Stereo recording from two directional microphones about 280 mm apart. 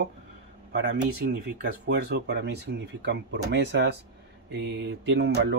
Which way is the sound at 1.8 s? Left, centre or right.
Right.